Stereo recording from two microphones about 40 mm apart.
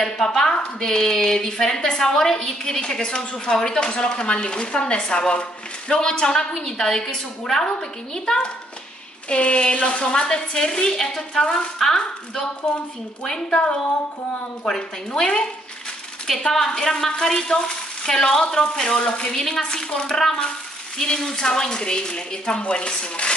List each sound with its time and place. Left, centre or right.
0.0 s a sound: centre
0.7 s a woman's voice: centre
13.2 s a woman's voice: left
16.4 s a woman's voice: centre